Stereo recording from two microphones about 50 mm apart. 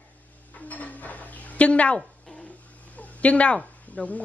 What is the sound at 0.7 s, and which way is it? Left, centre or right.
Dishes, left.